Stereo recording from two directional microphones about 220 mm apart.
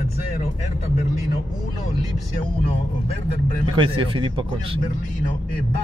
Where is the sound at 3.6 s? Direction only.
20° right (ahead or behind).